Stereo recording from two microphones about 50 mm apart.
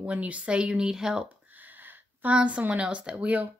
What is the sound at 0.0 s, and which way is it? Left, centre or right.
Speech, right.